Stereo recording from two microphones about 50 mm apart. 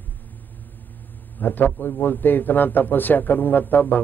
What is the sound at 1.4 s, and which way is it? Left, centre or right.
A man's voice, left.